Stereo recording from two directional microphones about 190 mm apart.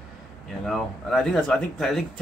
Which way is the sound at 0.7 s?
Centre (ahead or behind).